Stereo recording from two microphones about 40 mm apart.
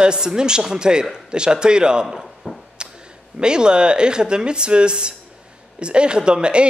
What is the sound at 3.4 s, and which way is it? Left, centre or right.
Speech, right.